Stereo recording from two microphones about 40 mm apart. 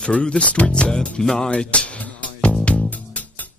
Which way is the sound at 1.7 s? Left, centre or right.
Left.